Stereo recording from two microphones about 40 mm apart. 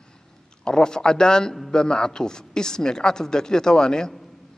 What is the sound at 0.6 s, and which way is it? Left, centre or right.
A man's voice, centre.